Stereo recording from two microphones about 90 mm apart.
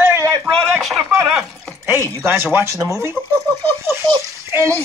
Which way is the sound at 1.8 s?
30° right (ahead or behind).